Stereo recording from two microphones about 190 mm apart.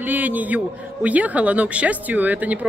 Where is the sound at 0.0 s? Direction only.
10° right (ahead or behind).